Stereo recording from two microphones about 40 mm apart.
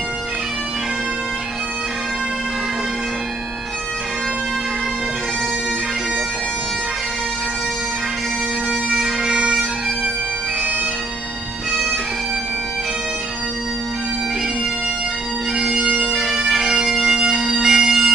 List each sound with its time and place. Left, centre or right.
8.9 s bagpipes: centre
15.5 s bagpipes: right